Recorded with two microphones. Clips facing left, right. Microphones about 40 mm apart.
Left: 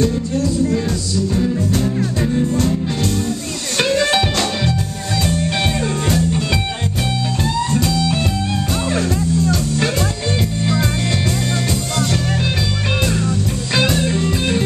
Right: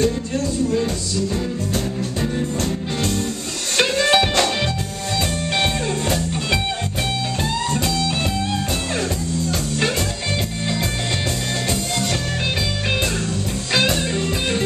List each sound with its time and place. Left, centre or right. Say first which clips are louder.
3.7 s music: left 1 dB; centre
7.7 s music: left 3 dB; centre
13.7 s music: left 2 dB; centre